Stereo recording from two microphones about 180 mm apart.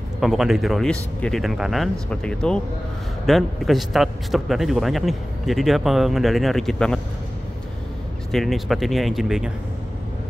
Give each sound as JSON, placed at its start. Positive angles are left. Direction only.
{"t": 0.2, "sound": "speech", "side_deg": 0}
{"t": 8.3, "sound": "speech", "side_deg": 0}